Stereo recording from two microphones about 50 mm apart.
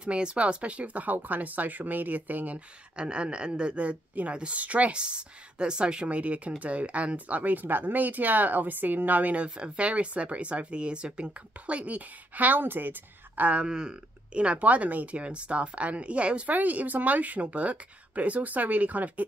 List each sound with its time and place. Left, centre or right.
0.0 s speech: right
3.0 s speech: right
13.4 s speech: right